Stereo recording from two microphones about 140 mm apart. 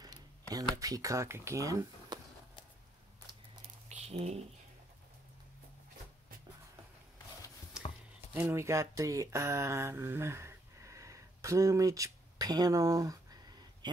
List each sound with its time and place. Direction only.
0.0 s a sound: 25° right (ahead or behind)
0.7 s speech: 25° right (ahead or behind)
3.9 s squish: 50° right (ahead or behind)
8.3 s speech: 15° right (ahead or behind)